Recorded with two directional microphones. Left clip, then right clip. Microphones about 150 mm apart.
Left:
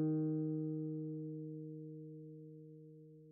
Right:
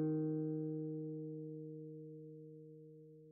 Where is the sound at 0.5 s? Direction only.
15° right (ahead or behind).